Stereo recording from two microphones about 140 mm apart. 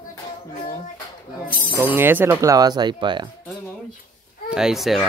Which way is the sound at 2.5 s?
30° right (ahead or behind).